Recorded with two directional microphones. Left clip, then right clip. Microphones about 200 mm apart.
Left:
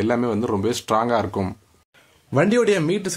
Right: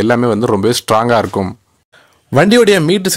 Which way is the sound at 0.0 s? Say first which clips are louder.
Right 9 dB; 40° right (ahead or behind).